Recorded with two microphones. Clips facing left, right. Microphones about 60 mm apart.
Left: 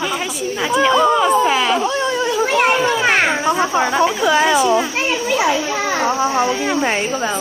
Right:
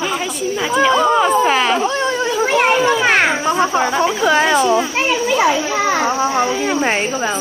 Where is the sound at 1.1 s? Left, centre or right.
Right.